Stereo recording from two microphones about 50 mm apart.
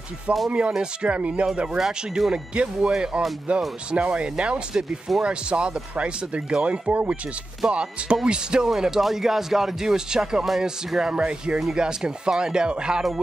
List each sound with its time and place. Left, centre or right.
0.5 s speech: right
1.8 s speech: centre
4.7 s speech: centre
5.2 s speech: right
6.9 s speech: right
7.6 s speech: centre
10.4 s speech: centre